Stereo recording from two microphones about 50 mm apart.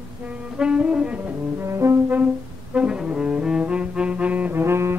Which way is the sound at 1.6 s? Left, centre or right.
Right.